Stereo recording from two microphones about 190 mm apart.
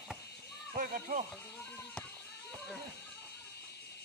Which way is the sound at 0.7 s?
45° right (ahead or behind).